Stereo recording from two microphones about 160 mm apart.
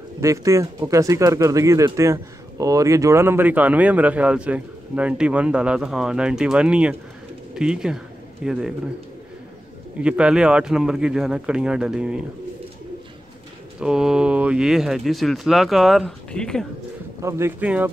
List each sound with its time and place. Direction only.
0.2 s speech: 20° right (ahead or behind)
10.0 s speech: 5° right (ahead or behind)
13.7 s speech: 5° right (ahead or behind)
17.2 s speech: 15° right (ahead or behind)